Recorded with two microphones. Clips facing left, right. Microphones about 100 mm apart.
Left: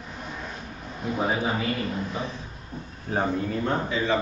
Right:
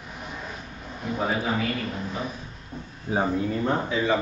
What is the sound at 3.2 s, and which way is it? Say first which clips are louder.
Speech: right 1 dB; 5° right (ahead or behind).